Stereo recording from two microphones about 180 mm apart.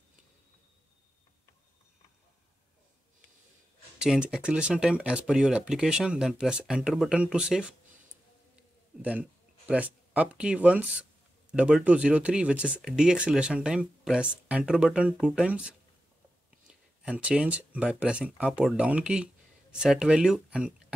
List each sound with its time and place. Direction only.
4.0 s speech: 5° right (ahead or behind)
9.0 s speech: 5° right (ahead or behind)